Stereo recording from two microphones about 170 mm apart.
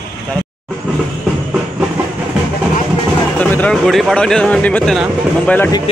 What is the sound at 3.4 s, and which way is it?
Speech, 10° left (ahead or behind).